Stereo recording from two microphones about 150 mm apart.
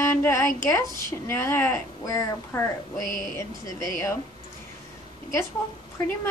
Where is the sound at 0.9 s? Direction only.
15° left (ahead or behind).